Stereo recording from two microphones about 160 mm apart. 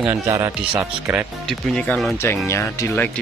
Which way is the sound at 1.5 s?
5° left (ahead or behind).